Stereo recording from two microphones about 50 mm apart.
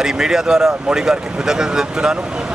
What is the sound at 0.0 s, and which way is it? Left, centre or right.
Speech, centre.